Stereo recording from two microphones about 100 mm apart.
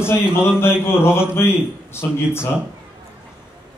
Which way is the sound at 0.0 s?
25° left (ahead or behind).